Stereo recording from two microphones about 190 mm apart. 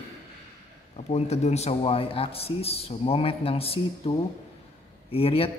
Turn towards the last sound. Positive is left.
turn(degrees=30)  # may be behind; listen again after turning